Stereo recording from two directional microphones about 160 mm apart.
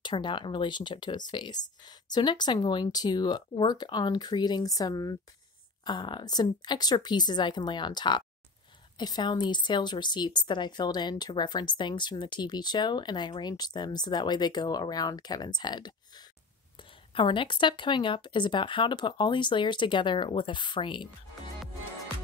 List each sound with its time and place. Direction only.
0.0 s a woman's voice: 30° left (ahead or behind)
17.1 s a woman's voice: 30° left (ahead or behind)